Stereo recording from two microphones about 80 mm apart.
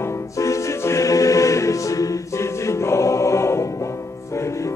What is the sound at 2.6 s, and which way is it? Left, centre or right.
Music, left.